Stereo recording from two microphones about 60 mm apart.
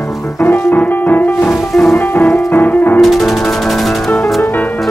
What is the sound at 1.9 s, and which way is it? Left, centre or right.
Music, left.